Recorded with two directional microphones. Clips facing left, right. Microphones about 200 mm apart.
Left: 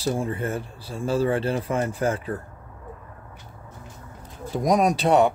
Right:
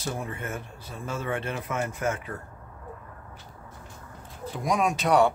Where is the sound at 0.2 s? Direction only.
30° left (ahead or behind).